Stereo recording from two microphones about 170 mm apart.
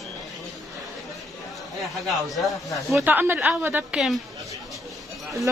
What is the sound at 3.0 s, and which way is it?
A woman's voice, 10° right (ahead or behind).